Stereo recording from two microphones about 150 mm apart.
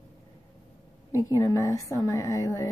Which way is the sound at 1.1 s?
20° left (ahead or behind).